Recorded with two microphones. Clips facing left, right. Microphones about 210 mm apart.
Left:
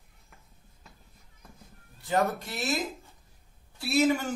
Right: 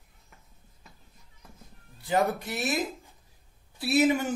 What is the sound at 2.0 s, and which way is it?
Speech, 15° right (ahead or behind).